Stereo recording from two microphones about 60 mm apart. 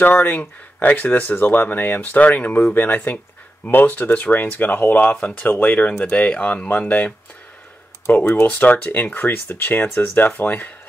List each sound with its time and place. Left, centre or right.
0.0 s speech: left
8.1 s speech: left